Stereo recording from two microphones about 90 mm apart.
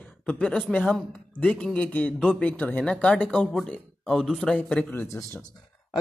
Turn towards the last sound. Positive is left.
turn(degrees=30)  # may be behind; listen again after turning